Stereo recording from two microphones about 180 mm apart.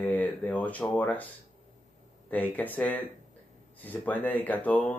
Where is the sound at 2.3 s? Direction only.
10° left (ahead or behind).